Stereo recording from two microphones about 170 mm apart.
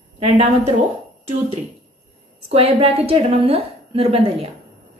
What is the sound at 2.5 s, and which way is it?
A woman's voice, 35° right (ahead or behind).